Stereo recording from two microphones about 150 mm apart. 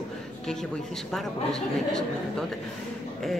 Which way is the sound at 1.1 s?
Centre (ahead or behind).